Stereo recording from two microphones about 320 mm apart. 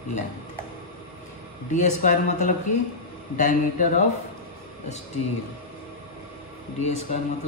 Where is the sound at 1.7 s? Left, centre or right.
Left.